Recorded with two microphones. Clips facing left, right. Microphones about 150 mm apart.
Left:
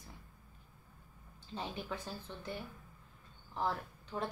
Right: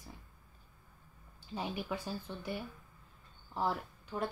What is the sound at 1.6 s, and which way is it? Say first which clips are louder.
A woman's voice: right 3 dB; 10° right (ahead or behind).